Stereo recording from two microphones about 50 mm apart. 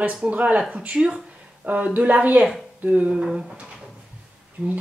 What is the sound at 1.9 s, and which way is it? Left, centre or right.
Speech, right.